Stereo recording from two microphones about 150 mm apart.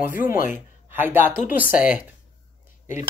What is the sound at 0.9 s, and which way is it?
Speech, 15° right (ahead or behind).